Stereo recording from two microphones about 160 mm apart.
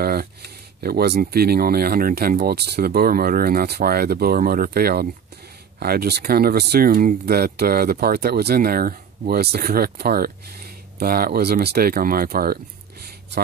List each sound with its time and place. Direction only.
0.0 s speech: 70° right (ahead or behind)